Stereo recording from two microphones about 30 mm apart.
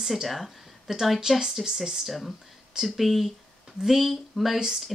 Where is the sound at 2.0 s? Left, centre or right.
Centre.